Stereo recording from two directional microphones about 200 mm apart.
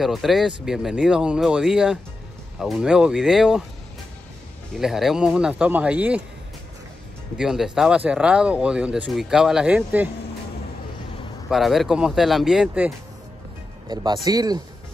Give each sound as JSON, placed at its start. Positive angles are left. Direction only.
{"t": 0.0, "sound": "speech", "side_deg": 0}
{"t": 4.7, "sound": "speech", "side_deg": 0}
{"t": 7.3, "sound": "speech", "side_deg": 0}
{"t": 11.5, "sound": "speech", "side_deg": 0}
{"t": 13.8, "sound": "speech", "side_deg": -20}